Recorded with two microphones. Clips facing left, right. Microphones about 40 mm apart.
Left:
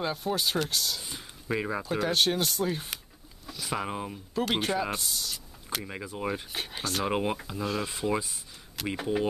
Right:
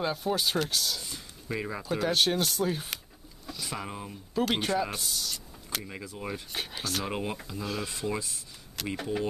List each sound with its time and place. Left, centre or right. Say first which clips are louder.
0.0 s speech: right 1 dB; centre
1.0 s speech: left 3 dB; centre
3.4 s a sound: even; centre
3.7 s speech: left 7 dB; centre
4.4 s speech: right 1 dB; centre
5.9 s speech: left 4 dB; centre
6.5 s speech: left 1 dB; centre
7.1 s speech: left 5 dB; centre
7.6 s speech: left 3 dB; centre